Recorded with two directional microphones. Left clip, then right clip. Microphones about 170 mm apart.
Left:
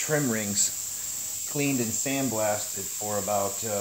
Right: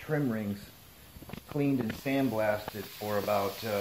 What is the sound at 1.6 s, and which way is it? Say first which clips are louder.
Speech: left 3 dB; 30° left (ahead or behind).